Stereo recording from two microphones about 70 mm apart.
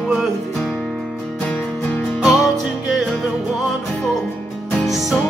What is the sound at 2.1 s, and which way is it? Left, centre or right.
Music, centre.